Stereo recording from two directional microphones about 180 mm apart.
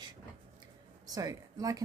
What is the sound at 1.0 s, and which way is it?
Speech, 20° right (ahead or behind).